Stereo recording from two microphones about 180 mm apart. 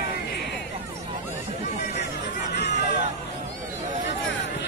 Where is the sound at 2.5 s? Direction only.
70° left (ahead or behind).